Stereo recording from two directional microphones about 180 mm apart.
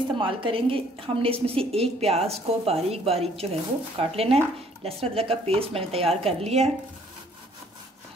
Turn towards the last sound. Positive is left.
turn(degrees=-35)  # may be behind; listen again after turning